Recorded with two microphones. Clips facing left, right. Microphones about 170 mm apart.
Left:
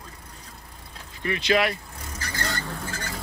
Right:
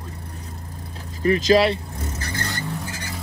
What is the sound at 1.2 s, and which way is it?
Vehicle, 35° right (ahead or behind).